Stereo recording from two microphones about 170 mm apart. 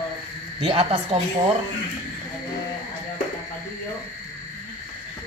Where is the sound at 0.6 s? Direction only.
35° right (ahead or behind).